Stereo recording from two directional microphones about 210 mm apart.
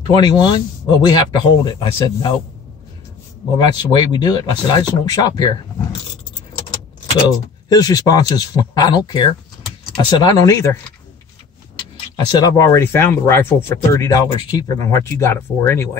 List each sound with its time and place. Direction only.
0.0 s speech: 20° left (ahead or behind)
3.5 s speech: 20° left (ahead or behind)
7.7 s speech: 20° left (ahead or behind)
12.3 s speech: 20° left (ahead or behind)